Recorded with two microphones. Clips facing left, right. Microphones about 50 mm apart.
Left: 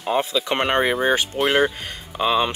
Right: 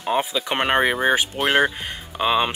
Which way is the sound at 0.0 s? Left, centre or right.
Centre.